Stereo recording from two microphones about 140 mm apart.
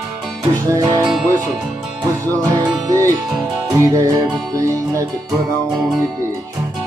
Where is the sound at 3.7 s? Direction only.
20° right (ahead or behind).